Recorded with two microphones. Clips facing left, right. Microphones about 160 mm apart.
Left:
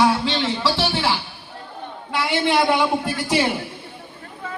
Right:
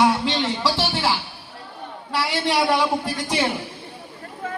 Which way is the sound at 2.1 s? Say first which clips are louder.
Left 2 dB; centre (ahead or behind).